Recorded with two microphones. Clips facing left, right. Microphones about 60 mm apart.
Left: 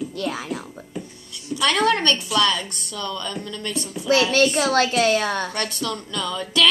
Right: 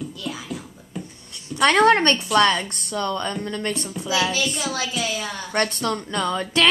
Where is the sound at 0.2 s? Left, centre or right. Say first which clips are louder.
Left 4 dB; left.